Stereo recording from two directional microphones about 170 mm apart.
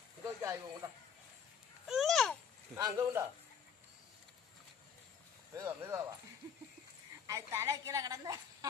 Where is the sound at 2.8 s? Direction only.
20° right (ahead or behind).